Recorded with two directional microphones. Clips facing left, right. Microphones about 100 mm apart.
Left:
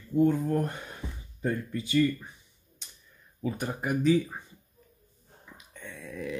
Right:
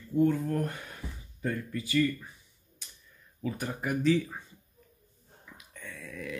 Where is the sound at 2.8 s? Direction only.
25° left (ahead or behind).